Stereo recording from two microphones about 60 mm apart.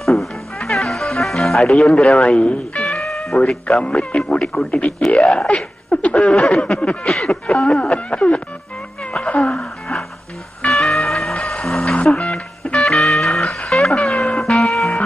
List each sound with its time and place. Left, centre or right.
0.0 s music: centre
2.8 s music: centre
3.6 s a sound: centre
7.1 s a sound: centre
9.2 s music: centre
9.6 s music: centre
11.8 s music: centre